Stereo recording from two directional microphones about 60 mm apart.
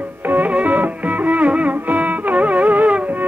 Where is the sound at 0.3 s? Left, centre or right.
Right.